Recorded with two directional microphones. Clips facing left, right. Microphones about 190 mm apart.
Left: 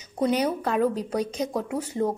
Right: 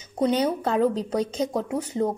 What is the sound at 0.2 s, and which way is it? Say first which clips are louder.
Speech: right 1 dB; 25° right (ahead or behind).